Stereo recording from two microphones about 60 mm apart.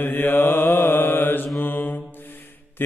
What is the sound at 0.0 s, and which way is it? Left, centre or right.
Mantra, left.